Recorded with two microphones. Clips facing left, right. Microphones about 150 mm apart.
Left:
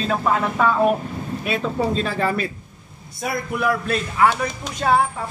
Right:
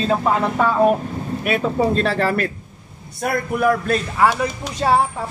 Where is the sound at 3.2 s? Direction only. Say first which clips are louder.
Right 4 dB; 55° right (ahead or behind).